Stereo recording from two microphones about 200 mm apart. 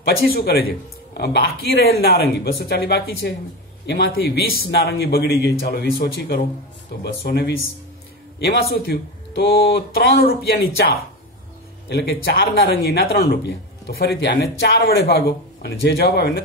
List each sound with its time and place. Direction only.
0.0 s speech: 55° left (ahead or behind)
11.9 s speech: 55° left (ahead or behind)